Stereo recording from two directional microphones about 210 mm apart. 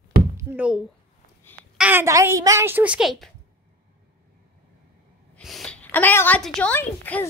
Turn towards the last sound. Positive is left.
turn(degrees=10)  # may be behind; listen again after turning